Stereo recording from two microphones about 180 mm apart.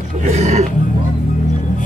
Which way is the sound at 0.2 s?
40° right (ahead or behind).